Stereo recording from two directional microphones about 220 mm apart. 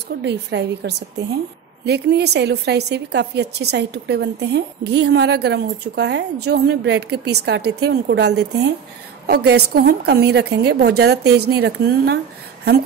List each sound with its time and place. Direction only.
0.2 s a woman's voice: 50° right (ahead or behind)